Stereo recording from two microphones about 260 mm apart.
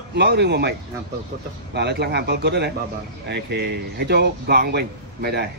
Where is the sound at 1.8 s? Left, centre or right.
Right.